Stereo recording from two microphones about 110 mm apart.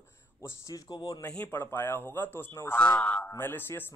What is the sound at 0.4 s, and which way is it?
Speech, 30° left (ahead or behind).